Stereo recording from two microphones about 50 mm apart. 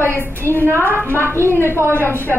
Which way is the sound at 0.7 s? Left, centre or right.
Right.